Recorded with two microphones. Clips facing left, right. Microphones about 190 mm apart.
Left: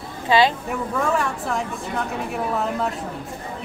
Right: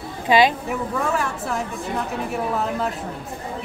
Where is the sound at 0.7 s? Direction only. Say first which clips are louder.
Left 1 dB; centre (ahead or behind).